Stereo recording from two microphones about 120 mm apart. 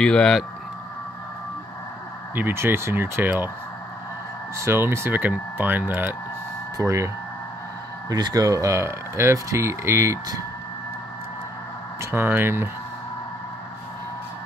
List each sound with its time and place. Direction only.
0.0 s speech: 5° left (ahead or behind)
2.3 s speech: 20° right (ahead or behind)
4.6 s speech: 20° right (ahead or behind)
8.1 s speech: 35° right (ahead or behind)
12.0 s speech: 20° right (ahead or behind)